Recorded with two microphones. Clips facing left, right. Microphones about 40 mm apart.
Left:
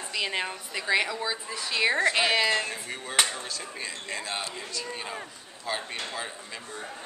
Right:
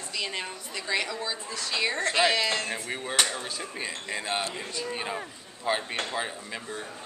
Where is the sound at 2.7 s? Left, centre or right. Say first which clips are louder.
Even; centre.